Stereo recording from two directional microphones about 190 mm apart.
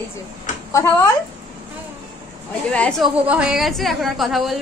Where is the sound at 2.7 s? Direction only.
5° left (ahead or behind).